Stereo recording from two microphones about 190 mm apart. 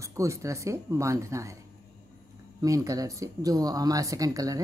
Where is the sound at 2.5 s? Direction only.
15° right (ahead or behind).